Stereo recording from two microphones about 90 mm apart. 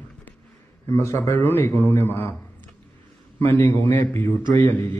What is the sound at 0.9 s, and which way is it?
A man's voice, 30° left (ahead or behind).